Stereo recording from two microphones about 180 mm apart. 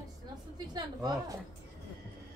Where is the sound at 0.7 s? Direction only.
20° right (ahead or behind).